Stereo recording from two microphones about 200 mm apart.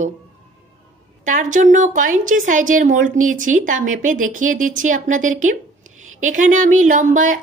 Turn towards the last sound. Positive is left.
turn(degrees=-40)  # may be behind; listen again after turning